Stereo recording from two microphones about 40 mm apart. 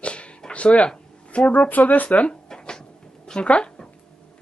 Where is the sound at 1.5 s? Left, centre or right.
Left.